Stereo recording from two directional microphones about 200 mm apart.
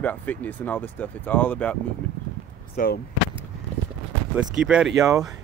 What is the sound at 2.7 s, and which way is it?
Speech, 45° left (ahead or behind).